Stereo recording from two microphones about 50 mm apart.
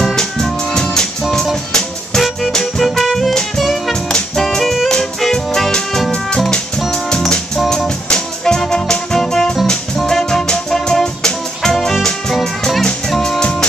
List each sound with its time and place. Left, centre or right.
0.0 s music: centre
3.9 s music: centre
6.9 s music: centre
13.4 s music: centre